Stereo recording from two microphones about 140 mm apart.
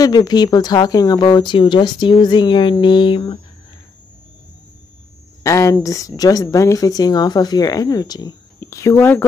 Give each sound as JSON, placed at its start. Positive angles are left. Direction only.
{"t": 0.0, "sound": "speech", "side_deg": 30}
{"t": 5.4, "sound": "a woman's voice", "side_deg": 20}